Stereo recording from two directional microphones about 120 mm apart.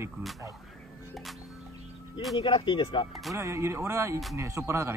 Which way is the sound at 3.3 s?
25° right (ahead or behind).